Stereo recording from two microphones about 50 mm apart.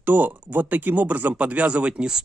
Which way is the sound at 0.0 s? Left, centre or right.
Right.